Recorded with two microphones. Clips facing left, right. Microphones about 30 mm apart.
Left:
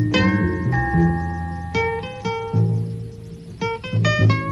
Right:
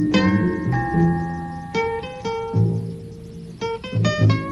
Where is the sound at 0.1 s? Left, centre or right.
Centre.